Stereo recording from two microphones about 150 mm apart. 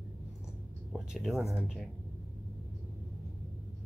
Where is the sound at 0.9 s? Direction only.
Centre (ahead or behind).